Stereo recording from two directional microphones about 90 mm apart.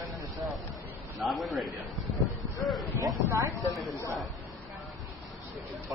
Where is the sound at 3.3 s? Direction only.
40° right (ahead or behind).